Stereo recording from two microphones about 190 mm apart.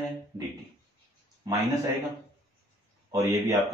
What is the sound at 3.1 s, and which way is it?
Speech, 20° right (ahead or behind).